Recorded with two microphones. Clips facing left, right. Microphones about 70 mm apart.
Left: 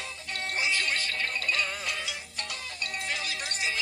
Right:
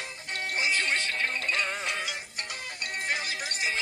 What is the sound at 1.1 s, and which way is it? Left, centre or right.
Music, centre.